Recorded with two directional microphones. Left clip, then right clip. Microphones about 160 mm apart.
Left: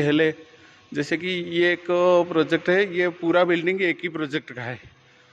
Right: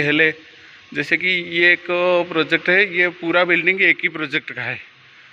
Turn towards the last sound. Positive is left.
turn(degrees=20)  # may be behind; listen again after turning